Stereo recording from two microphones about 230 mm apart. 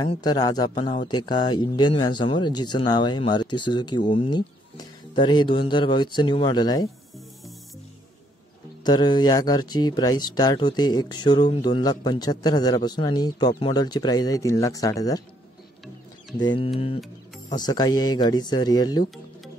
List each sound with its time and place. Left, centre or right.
0.0 s speech: centre
8.8 s speech: centre
16.3 s speech: left